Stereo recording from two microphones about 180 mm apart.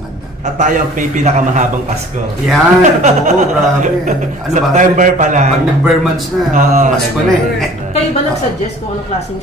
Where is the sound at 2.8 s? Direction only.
40° right (ahead or behind).